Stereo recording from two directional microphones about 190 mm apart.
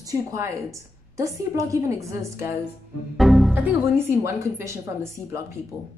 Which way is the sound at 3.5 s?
15° right (ahead or behind).